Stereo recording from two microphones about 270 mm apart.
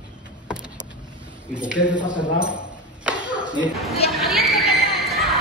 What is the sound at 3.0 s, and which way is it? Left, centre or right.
Clapping, centre.